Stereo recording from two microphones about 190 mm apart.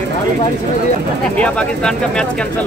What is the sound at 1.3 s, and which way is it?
Speech, 5° left (ahead or behind).